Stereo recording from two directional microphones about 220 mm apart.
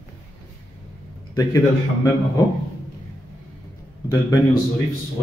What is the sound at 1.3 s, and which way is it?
Speech, 15° left (ahead or behind).